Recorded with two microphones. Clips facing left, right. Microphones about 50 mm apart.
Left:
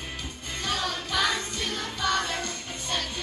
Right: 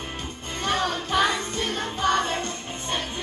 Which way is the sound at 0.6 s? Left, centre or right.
Right.